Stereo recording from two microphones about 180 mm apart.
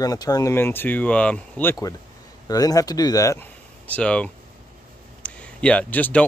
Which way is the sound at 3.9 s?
5° left (ahead or behind).